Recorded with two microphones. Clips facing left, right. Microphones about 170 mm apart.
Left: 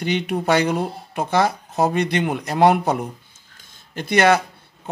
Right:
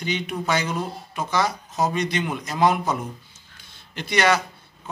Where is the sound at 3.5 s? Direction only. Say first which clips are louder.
Left 4 dB; 50° left (ahead or behind).